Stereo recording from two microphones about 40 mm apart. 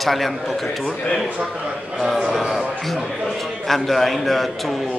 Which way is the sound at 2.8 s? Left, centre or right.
Centre.